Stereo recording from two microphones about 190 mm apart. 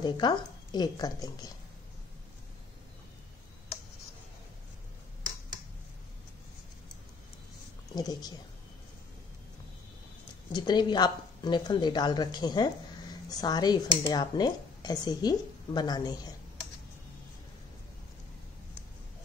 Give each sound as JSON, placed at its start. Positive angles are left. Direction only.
{"t": 0.0, "sound": "speech", "side_deg": 20}
{"t": 7.9, "sound": "speech", "side_deg": 20}
{"t": 10.5, "sound": "speech", "side_deg": 25}